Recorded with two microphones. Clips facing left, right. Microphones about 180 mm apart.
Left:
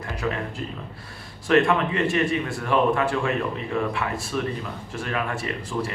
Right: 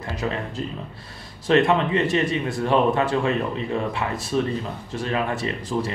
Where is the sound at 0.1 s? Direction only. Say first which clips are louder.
Right 1 dB; 20° right (ahead or behind).